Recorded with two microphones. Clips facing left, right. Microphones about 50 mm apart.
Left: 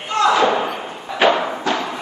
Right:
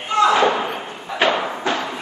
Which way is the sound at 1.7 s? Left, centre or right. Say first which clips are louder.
Left 1 dB; right.